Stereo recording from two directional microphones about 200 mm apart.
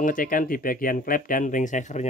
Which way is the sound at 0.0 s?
45° left (ahead or behind).